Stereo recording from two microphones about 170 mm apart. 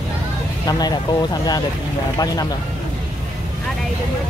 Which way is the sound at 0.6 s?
25° left (ahead or behind).